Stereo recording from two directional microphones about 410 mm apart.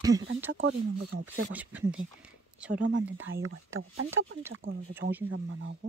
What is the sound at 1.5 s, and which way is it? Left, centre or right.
Speech, centre.